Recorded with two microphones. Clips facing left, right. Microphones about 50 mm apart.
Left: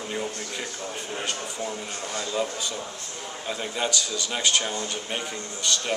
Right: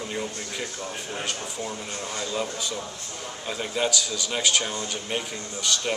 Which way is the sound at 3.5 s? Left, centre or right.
Centre.